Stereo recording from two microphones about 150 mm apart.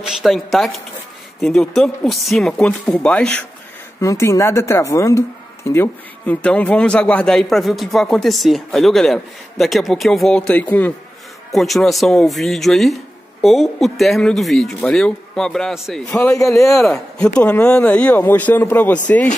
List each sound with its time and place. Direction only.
0.0 s speech: centre (ahead or behind)
4.0 s speech: 20° left (ahead or behind)
11.5 s speech: centre (ahead or behind)
17.4 s speech: 10° left (ahead or behind)